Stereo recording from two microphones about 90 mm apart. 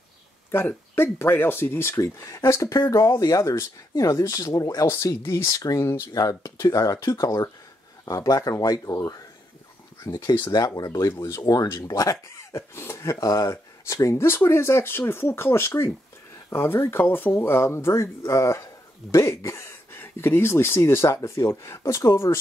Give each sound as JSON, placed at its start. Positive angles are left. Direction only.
{"t": 0.5, "sound": "speech", "side_deg": 25}
{"t": 10.1, "sound": "speech", "side_deg": 35}
{"t": 10.4, "sound": "speech", "side_deg": 50}
{"t": 10.7, "sound": "speech", "side_deg": 40}